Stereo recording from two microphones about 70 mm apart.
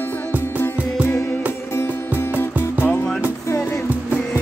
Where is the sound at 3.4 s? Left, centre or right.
Left.